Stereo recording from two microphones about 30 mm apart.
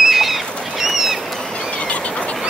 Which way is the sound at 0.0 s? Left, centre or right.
Centre.